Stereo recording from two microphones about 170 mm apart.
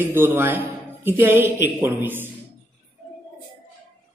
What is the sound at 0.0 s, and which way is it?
A woman's voice, 10° right (ahead or behind).